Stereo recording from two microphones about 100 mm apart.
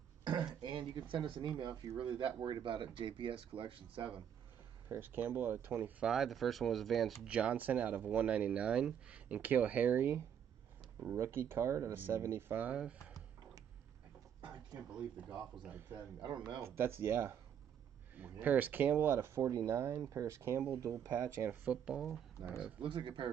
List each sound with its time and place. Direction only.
0.2 s throat clearing: 45° right (ahead or behind)
0.6 s speech: 50° right (ahead or behind)
4.8 s speech: 20° right (ahead or behind); by 7.1 s centre (ahead or behind)
7.2 s speech: 15° right (ahead or behind)
15.5 s speech: 15° right (ahead or behind)
16.2 s speech: 50° right (ahead or behind)
16.6 s speech: 25° right (ahead or behind)
21.5 s speech: 10° right (ahead or behind)
22.8 s speech: 55° right (ahead or behind)